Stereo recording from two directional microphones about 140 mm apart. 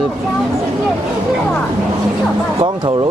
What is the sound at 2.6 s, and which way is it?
Speech, 35° right (ahead or behind).